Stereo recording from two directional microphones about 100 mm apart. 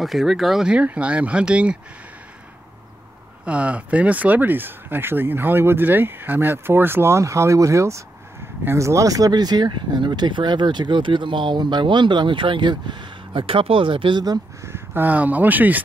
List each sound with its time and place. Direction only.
0.0 s speech: centre (ahead or behind)
3.4 s speech: 15° right (ahead or behind); by 14.4 s 45° right (ahead or behind)
14.6 s speech: 20° right (ahead or behind)